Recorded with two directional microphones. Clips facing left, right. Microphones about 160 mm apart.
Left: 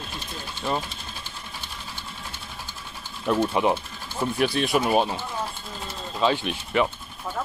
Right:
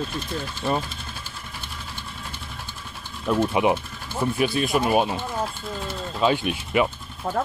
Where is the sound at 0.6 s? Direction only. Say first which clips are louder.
Right 1 dB; 5° right (ahead or behind).